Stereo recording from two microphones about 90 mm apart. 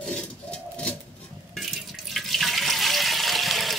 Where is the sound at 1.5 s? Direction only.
Centre (ahead or behind).